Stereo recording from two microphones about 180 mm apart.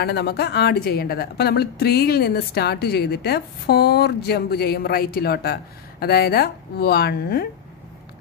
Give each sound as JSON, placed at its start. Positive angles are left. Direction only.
{"t": 0.0, "sound": "a woman's voice", "side_deg": 65}